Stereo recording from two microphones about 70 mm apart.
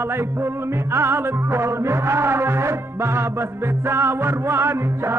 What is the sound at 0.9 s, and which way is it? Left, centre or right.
Music, right.